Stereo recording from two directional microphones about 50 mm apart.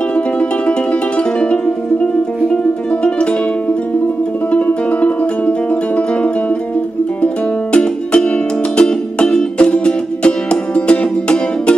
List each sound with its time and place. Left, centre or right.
0.1 s music: left
4.5 s music: left
7.7 s music: centre